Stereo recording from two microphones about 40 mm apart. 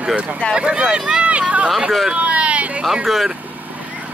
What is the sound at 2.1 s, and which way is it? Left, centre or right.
Speech, right.